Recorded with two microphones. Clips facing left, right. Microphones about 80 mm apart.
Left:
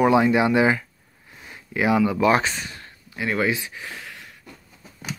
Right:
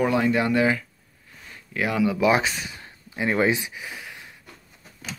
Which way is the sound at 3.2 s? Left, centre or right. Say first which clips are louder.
Right 1 dB; right.